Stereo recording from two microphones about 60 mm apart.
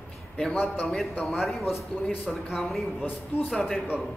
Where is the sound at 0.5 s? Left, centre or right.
Left.